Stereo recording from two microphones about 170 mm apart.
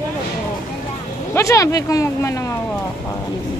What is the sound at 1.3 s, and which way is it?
Speech, 20° left (ahead or behind).